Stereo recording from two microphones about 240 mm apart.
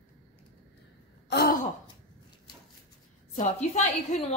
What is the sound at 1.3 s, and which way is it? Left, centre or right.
Gasp, left.